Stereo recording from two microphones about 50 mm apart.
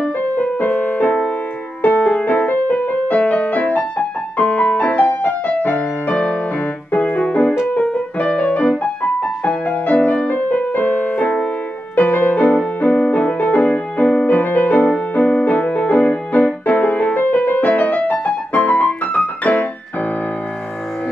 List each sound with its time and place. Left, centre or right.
0.4 s music: left